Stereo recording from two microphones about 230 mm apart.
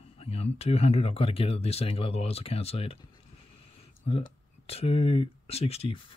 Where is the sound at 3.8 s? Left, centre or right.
Left.